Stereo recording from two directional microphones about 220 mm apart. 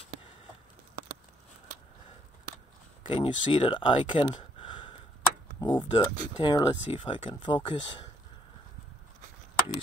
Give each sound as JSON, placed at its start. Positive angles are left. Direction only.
{"t": 3.1, "sound": "speech", "side_deg": 20}